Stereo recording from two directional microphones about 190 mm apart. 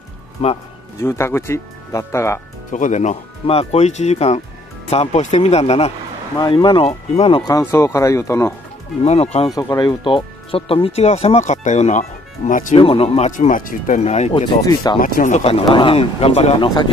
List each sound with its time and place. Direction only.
0.4 s speech: 30° left (ahead or behind)
1.0 s speech: 15° left (ahead or behind)
2.7 s speech: 40° left (ahead or behind)
7.5 s speech: 15° left (ahead or behind)
9.0 s speech: 35° left (ahead or behind)
9.6 s speech: 20° left (ahead or behind); by 12.7 s 40° left (ahead or behind)
12.7 s speech: 30° left (ahead or behind)
14.5 s speech: 20° left (ahead or behind)
15.0 s speech: 45° left (ahead or behind); by 16.8 s 25° left (ahead or behind)